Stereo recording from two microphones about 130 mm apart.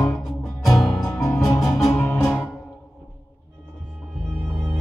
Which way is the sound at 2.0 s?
15° left (ahead or behind).